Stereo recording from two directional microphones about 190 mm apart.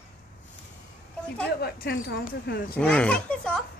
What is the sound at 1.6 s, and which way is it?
Speech, 55° left (ahead or behind).